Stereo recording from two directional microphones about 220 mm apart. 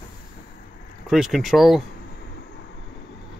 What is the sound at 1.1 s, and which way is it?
Speech, centre (ahead or behind).